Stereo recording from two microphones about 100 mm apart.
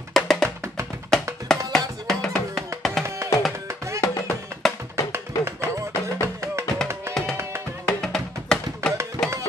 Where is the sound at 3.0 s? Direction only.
30° right (ahead or behind).